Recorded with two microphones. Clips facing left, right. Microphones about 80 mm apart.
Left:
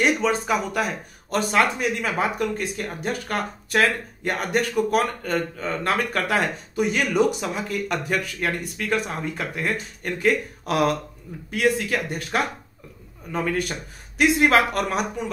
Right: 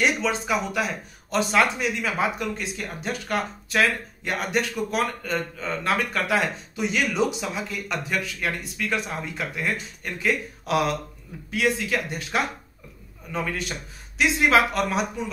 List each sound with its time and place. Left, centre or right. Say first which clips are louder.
0.0 s speech: left 3 dB; left